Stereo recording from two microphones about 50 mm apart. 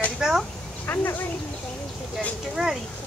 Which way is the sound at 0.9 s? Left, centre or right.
Left.